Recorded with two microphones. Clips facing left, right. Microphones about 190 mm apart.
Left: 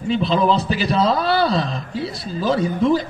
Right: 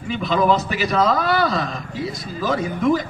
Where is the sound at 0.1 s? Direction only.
30° left (ahead or behind).